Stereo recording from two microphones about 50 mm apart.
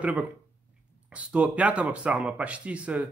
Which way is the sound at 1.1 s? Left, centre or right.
Right.